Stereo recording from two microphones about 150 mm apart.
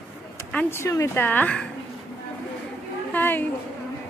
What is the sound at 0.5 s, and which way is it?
A woman's voice, 15° left (ahead or behind).